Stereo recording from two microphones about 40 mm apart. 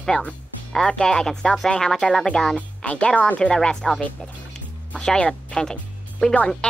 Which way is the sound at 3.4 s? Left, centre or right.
Centre.